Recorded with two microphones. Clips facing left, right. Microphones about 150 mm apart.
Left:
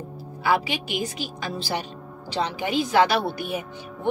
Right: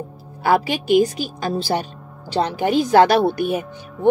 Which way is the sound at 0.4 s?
45° right (ahead or behind).